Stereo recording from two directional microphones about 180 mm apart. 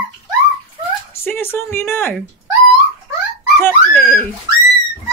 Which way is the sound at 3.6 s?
10° left (ahead or behind).